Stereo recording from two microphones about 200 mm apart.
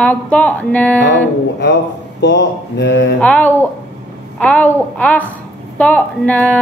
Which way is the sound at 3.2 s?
5° left (ahead or behind).